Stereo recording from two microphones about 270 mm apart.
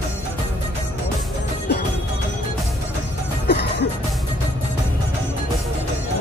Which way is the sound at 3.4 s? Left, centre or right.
Left.